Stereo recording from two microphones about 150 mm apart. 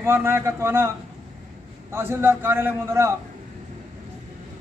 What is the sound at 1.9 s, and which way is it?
A man's voice, 15° right (ahead or behind).